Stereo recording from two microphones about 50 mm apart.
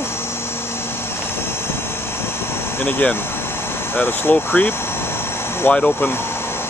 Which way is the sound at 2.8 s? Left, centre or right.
Left.